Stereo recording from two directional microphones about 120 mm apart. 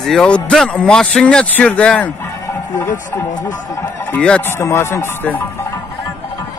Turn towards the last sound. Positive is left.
turn(degrees=15)  # may be behind; listen again after turning